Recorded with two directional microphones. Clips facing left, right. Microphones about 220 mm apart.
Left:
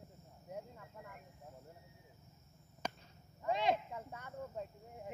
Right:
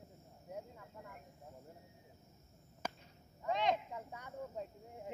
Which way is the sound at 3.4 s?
10° left (ahead or behind).